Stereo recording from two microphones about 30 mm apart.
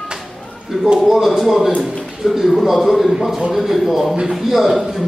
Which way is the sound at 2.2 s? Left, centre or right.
Right.